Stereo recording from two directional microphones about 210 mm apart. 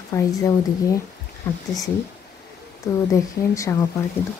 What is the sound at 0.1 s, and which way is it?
Speech, 15° left (ahead or behind).